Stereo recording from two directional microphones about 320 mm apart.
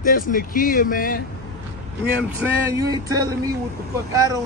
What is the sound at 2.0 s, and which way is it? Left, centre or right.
Speech, centre.